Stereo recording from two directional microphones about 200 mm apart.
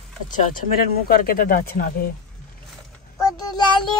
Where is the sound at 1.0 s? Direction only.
45° left (ahead or behind).